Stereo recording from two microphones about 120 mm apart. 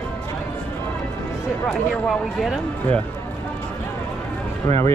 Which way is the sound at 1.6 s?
Centre (ahead or behind).